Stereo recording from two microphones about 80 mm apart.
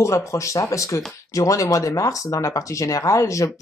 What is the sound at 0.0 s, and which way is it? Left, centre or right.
Speech, left.